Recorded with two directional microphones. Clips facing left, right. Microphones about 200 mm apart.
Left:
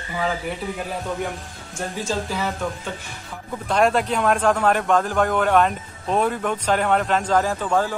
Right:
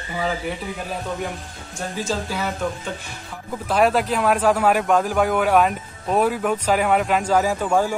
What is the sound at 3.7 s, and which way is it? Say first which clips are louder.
A man's voice: right 1 dB; 5° right (ahead or behind).